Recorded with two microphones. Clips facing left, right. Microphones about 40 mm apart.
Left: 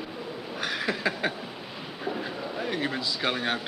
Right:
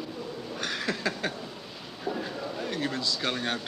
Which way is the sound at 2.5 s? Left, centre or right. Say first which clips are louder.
Left 3 dB; centre.